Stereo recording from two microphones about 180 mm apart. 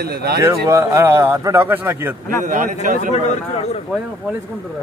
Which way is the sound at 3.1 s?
35° left (ahead or behind).